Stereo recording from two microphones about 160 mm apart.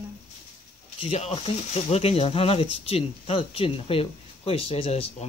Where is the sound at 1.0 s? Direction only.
40° left (ahead or behind).